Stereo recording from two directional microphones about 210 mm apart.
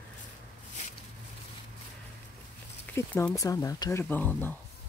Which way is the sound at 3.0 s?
15° left (ahead or behind).